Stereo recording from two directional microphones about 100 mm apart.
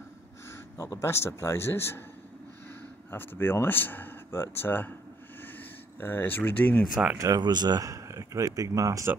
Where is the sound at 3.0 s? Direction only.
20° left (ahead or behind).